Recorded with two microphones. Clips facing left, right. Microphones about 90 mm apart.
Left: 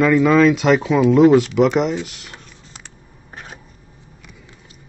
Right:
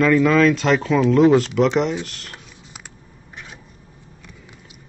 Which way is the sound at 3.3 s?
45° left (ahead or behind).